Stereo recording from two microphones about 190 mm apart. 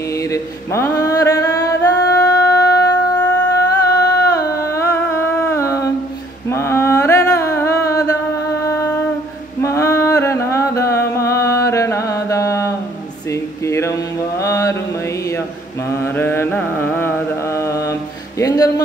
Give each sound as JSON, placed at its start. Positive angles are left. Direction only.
{"t": 0.1, "sound": "male singing", "side_deg": 15}
{"t": 6.5, "sound": "a sound", "side_deg": 15}
{"t": 13.3, "sound": "mantra", "side_deg": 15}
{"t": 15.9, "sound": "mantra", "side_deg": 10}
{"t": 18.4, "sound": "music", "side_deg": 20}